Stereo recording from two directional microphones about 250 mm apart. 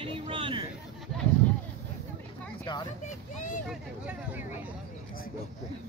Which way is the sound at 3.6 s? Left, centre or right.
Centre.